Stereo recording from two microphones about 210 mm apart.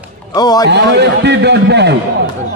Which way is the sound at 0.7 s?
55° right (ahead or behind).